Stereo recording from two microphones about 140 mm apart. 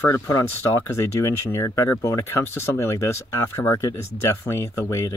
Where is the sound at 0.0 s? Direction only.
20° left (ahead or behind).